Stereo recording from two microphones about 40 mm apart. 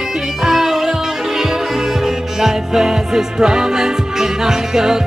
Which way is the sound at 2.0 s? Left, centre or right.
Centre.